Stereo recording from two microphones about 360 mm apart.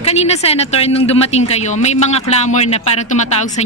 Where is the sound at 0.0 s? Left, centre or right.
Centre.